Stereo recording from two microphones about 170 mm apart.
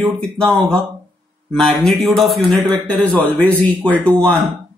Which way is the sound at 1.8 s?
Centre (ahead or behind).